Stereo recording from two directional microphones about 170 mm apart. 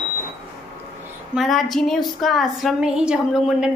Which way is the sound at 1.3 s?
Centre (ahead or behind).